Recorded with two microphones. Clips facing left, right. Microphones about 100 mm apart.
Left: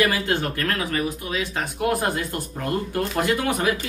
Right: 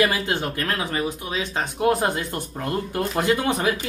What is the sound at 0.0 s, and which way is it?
Speech, 20° right (ahead or behind).